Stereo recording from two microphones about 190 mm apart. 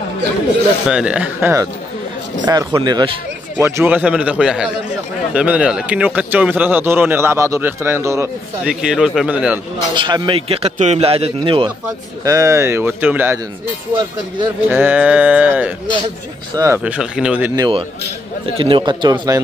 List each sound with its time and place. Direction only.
0.8 s a man's voice: 5° right (ahead or behind)
8.8 s a man's voice: centre (ahead or behind)
9.9 s a man's voice: 25° right (ahead or behind)
12.3 s speech: 15° right (ahead or behind)
14.7 s speech: 10° right (ahead or behind)
16.8 s a man's voice: 5° right (ahead or behind)
17.6 s a man's voice: 25° right (ahead or behind)